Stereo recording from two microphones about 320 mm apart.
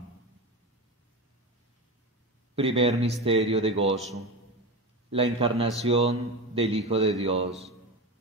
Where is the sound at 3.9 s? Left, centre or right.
Centre.